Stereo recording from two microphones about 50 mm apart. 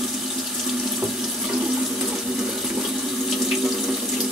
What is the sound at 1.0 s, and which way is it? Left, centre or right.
Water, right.